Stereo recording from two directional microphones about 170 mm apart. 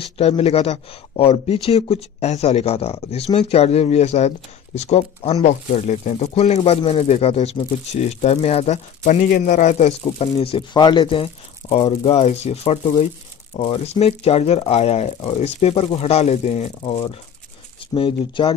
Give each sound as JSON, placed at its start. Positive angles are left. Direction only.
{"t": 0.0, "sound": "speech", "side_deg": 35}